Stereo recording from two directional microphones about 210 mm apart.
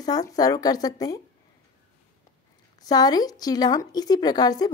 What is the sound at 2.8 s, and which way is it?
Speech, 20° left (ahead or behind).